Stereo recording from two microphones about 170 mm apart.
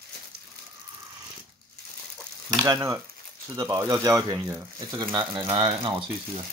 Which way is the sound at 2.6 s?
20° right (ahead or behind).